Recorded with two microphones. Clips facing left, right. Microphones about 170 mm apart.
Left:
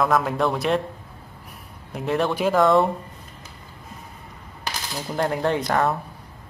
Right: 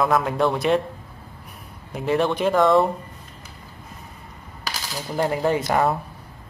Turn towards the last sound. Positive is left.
turn(degrees=-5)  # may be behind; listen again after turning